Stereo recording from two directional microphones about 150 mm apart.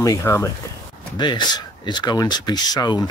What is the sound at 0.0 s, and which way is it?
Speech, 20° left (ahead or behind).